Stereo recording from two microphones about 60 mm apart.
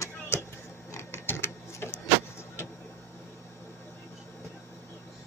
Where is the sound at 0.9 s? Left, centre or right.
Left.